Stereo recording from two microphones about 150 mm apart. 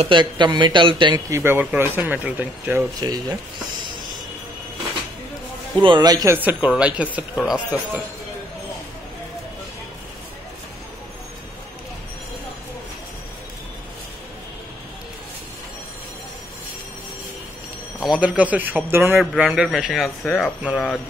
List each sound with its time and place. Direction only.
0.0 s a man's voice: 30° right (ahead or behind)
1.3 s speech: 15° right (ahead or behind)
3.0 s a man's voice: 25° right (ahead or behind)
5.8 s a man's voice: 30° right (ahead or behind)
6.3 s speech: 10° right (ahead or behind)
18.0 s speech: 5° right (ahead or behind)
19.1 s a man's voice: 5° right (ahead or behind)